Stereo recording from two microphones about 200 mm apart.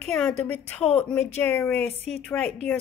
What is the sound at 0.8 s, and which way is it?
Speech, 30° left (ahead or behind).